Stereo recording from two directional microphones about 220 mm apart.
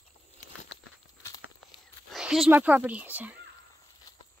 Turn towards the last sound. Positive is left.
turn(degrees=-5)  # may be behind; listen again after turning